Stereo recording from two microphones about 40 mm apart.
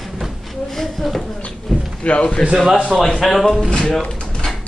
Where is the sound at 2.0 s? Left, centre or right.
Left.